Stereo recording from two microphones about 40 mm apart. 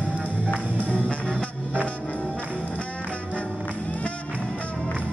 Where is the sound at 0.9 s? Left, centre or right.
Left.